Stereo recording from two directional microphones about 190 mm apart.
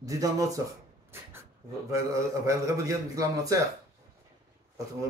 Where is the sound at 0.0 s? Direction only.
20° right (ahead or behind).